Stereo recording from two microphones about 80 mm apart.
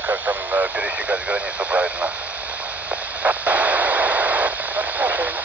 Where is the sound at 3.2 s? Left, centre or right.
Centre.